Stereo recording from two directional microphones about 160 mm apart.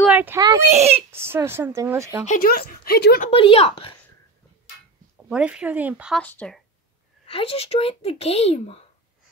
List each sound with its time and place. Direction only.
0.0 s a sound: 10° right (ahead or behind)
0.7 s a child's voice: 40° right (ahead or behind)
1.1 s speech: 15° right (ahead or behind)
2.2 s speech: 60° left (ahead or behind); by 3.3 s 75° left (ahead or behind)
3.3 s speech: 35° left (ahead or behind)
5.1 s speech: 5° right (ahead or behind)
6.2 s speech: 5° left (ahead or behind)
7.2 s speech: 35° left (ahead or behind)